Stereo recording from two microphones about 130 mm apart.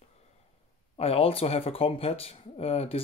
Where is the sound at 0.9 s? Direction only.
50° left (ahead or behind).